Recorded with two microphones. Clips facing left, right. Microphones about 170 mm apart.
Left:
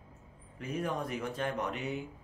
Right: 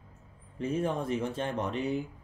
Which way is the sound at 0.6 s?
25° right (ahead or behind).